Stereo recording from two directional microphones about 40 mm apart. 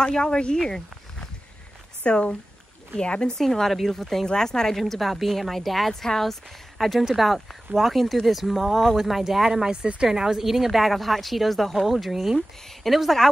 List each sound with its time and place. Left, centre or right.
0.0 s speech: centre
2.0 s speech: left
3.0 s speech: left; by 13.3 s centre